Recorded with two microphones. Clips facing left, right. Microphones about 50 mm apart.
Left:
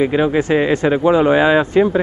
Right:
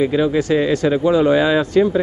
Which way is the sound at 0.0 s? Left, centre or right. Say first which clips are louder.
Left 1 dB; left.